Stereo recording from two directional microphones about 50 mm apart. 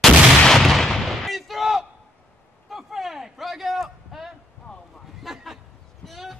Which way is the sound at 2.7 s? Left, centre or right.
Centre.